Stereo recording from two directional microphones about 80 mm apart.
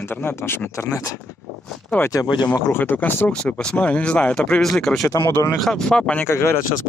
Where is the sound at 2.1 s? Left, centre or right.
Left.